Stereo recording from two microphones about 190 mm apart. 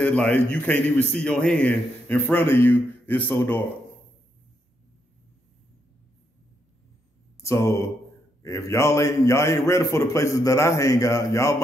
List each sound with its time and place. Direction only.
0.0 s a man's voice: 5° left (ahead or behind)
7.4 s a man's voice: 15° left (ahead or behind)